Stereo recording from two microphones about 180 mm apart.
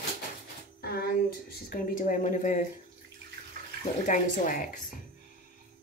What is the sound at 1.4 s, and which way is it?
Speech, 50° left (ahead or behind).